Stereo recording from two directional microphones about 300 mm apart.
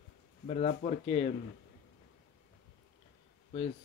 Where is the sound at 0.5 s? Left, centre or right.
Left.